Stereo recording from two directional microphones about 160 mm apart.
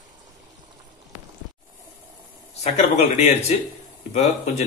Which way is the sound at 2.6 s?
45° left (ahead or behind).